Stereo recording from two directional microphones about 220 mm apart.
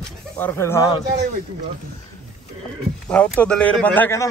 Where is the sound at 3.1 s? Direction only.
5° left (ahead or behind).